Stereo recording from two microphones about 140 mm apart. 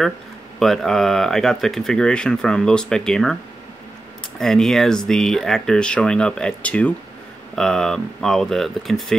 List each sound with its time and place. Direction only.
0.6 s speech: centre (ahead or behind)
4.4 s speech: centre (ahead or behind)